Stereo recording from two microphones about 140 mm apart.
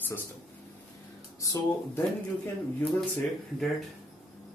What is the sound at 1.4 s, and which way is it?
Speech, 20° left (ahead or behind).